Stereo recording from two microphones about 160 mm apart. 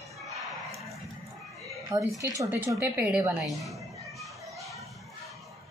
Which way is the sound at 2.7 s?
5° right (ahead or behind).